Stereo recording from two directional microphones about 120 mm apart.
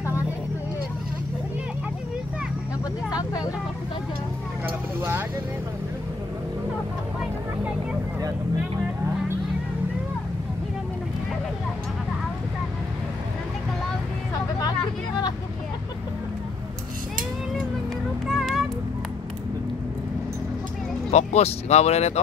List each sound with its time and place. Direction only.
3.1 s vehicle: 35° left (ahead or behind)
4.6 s vehicle: 20° right (ahead or behind)
18.2 s a sound: centre (ahead or behind)
21.1 s speech: 70° left (ahead or behind)